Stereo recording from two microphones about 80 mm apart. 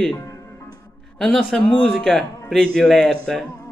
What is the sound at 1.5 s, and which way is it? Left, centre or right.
A man's voice, centre.